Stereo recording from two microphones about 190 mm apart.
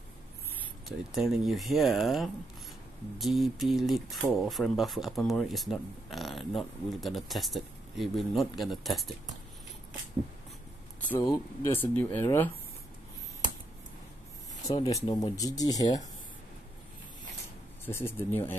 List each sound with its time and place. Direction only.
0.8 s speech: centre (ahead or behind)
11.1 s speech: 15° left (ahead or behind)
14.8 s speech: 15° left (ahead or behind)
17.8 s speech: 10° left (ahead or behind)